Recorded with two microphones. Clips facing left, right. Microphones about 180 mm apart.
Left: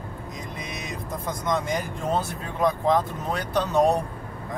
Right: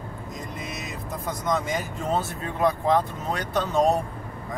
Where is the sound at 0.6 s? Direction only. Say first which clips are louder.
Even; centre (ahead or behind).